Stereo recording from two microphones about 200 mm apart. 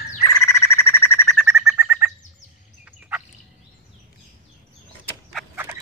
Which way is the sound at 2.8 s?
5° right (ahead or behind).